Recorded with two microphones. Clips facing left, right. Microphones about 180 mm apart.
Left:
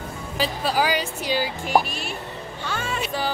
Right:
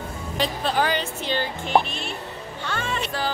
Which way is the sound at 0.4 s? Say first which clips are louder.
Even; 5° left (ahead or behind).